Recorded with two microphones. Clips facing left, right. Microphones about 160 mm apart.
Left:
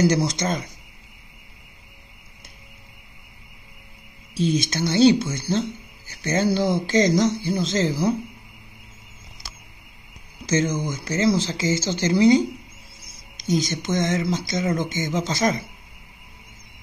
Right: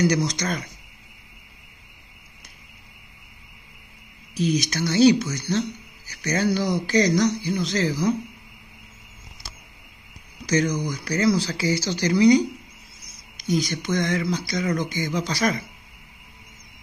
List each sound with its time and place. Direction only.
0.0 s speech: 25° left (ahead or behind)
4.3 s speech: 25° left (ahead or behind)
10.4 s speech: 25° left (ahead or behind)